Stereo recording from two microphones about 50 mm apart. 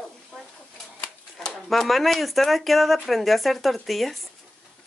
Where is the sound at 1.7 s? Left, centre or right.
Centre.